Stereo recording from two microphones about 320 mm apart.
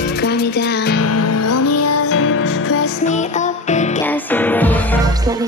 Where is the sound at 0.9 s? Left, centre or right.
Left.